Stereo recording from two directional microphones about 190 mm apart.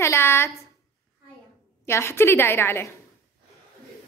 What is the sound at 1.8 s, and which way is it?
A woman's voice, 15° left (ahead or behind).